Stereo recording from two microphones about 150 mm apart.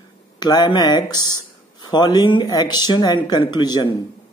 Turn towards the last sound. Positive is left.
turn(degrees=30)  # may be behind; listen again after turning